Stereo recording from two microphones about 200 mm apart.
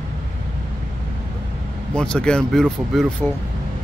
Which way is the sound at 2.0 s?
5° left (ahead or behind).